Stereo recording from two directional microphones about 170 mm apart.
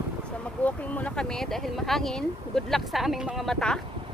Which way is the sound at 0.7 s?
10° left (ahead or behind).